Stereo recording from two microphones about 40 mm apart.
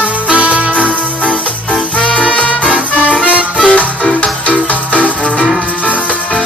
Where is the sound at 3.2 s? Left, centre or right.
Right.